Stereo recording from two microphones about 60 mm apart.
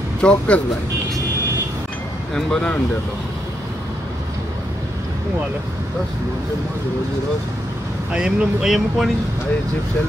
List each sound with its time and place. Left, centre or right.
0.2 s speech: centre
2.3 s speech: centre
8.1 s speech: centre